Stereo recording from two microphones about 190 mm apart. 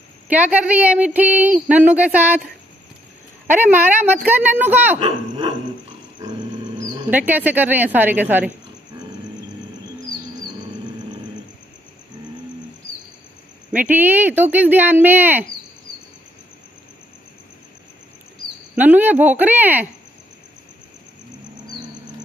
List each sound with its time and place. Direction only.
0.3 s speech: 10° right (ahead or behind)
3.5 s speech: 10° right (ahead or behind)
4.9 s speech: 30° right (ahead or behind)
7.1 s speech: 10° right (ahead or behind)
13.7 s speech: 10° right (ahead or behind)
18.8 s speech: 10° right (ahead or behind)